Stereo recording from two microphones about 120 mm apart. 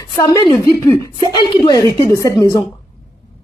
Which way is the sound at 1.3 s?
35° left (ahead or behind).